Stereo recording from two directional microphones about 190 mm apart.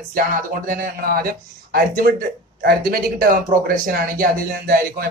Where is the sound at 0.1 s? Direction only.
50° right (ahead or behind).